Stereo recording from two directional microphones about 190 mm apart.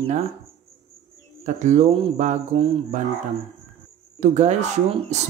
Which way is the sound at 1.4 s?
40° right (ahead or behind).